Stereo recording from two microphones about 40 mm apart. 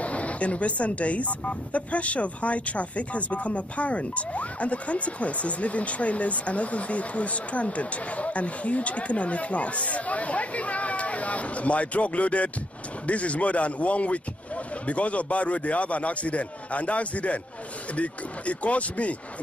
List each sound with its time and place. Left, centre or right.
0.0 s speech: left